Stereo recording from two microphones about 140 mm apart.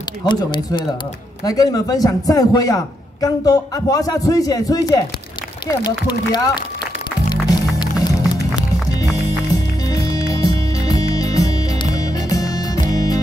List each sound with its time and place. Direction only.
0.2 s a man's voice: 30° left (ahead or behind)
7.8 s music: 30° left (ahead or behind)